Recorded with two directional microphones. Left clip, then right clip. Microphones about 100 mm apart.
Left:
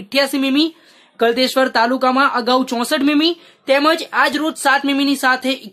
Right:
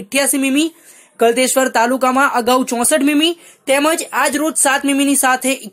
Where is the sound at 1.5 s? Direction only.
25° right (ahead or behind).